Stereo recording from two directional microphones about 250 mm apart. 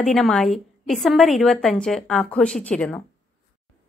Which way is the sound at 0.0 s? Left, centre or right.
Centre.